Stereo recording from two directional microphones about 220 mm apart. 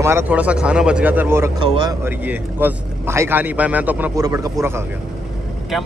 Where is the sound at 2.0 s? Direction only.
5° right (ahead or behind).